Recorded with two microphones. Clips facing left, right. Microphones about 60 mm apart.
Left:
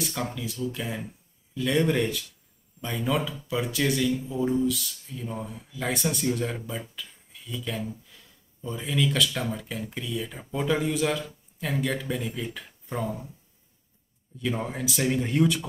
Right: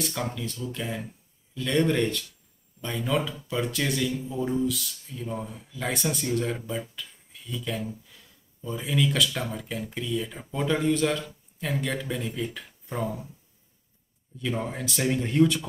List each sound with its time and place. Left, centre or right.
0.0 s speech: centre
14.4 s speech: centre